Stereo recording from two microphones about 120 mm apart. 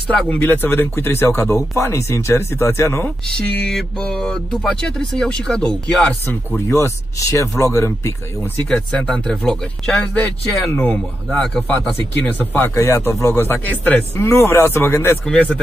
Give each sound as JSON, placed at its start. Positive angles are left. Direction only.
{"t": 0.1, "sound": "speech", "side_deg": 10}
{"t": 3.3, "sound": "speech", "side_deg": 5}
{"t": 6.2, "sound": "speech", "side_deg": 20}
{"t": 8.6, "sound": "speech", "side_deg": 5}
{"t": 12.3, "sound": "speech", "side_deg": 15}
{"t": 14.1, "sound": "speech", "side_deg": 25}